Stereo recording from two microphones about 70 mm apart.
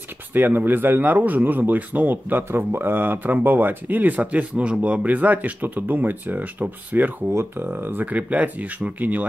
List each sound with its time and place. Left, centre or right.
0.3 s speech: right